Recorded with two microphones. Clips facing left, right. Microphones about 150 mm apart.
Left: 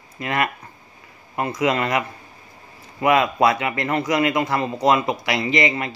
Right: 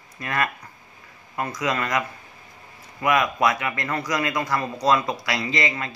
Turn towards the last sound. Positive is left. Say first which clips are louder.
# left 5 dB
turn(degrees=25)  # may be behind; listen again after turning